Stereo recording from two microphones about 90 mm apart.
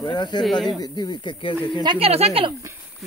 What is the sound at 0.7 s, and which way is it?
Speech, 50° left (ahead or behind).